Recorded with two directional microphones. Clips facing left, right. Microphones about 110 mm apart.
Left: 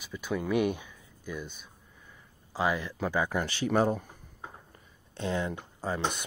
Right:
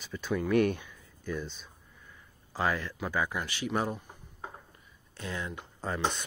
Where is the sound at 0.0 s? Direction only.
10° left (ahead or behind).